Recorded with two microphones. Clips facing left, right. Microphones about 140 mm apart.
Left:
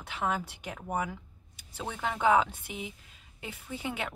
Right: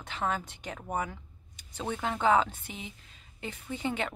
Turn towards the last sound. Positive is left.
turn(degrees=10)  # may be behind; listen again after turning